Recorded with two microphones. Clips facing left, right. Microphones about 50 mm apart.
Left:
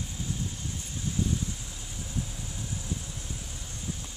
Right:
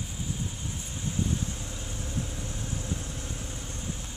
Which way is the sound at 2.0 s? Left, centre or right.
Right.